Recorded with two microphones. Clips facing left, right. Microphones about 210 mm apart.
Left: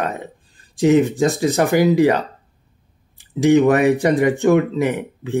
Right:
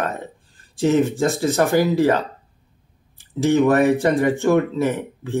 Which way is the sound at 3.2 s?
15° left (ahead or behind).